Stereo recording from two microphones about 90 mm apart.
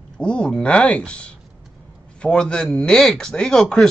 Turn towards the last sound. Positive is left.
turn(degrees=5)  # may be behind; listen again after turning